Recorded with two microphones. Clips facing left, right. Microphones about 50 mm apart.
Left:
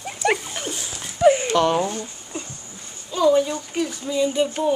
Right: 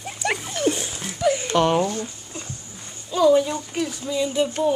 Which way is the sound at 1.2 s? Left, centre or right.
Left.